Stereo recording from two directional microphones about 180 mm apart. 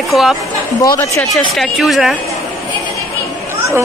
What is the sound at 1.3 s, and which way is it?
Speech, centre (ahead or behind).